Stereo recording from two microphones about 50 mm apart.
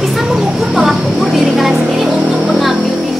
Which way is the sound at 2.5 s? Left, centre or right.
Centre.